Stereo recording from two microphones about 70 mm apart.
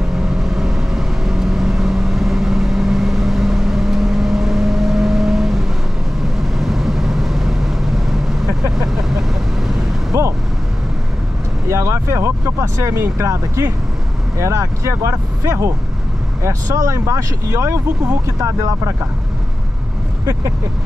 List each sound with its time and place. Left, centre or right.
0.1 s vehicle: centre
10.1 s vehicle: right
11.7 s vehicle: right
14.4 s speech: right